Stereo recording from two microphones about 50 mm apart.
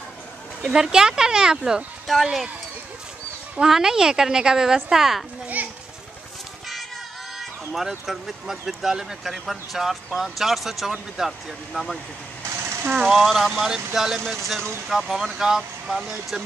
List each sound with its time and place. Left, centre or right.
0.7 s a woman's voice: centre
2.0 s speech: centre
3.5 s a woman's voice: centre
5.6 s children playing: right
7.3 s a sound: centre
8.1 s speech: centre
12.5 s a sound: right
12.9 s speech: centre